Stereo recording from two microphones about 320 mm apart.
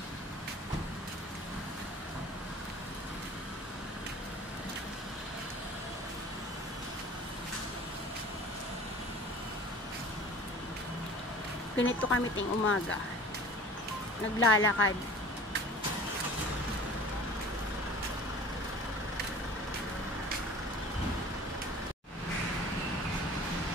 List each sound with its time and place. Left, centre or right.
11.7 s speech: left
14.4 s speech: left